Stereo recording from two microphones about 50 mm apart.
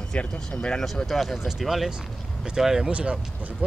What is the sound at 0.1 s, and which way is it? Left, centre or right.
Speech, left.